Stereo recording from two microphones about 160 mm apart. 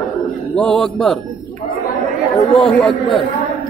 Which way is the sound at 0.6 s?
5° left (ahead or behind).